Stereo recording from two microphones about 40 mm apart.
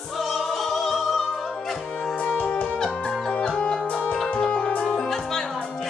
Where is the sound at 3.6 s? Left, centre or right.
Left.